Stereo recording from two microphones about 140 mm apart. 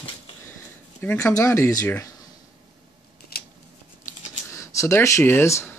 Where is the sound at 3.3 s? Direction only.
90° left.